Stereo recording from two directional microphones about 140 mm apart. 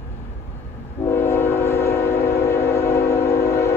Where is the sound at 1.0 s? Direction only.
15° left (ahead or behind).